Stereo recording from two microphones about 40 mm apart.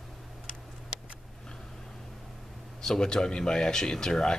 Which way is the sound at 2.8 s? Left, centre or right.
Centre.